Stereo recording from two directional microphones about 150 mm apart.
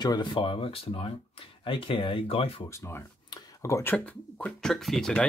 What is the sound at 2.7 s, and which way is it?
Speech, 15° left (ahead or behind).